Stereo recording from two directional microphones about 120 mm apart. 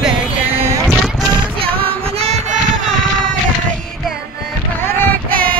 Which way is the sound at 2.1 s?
65° right (ahead or behind).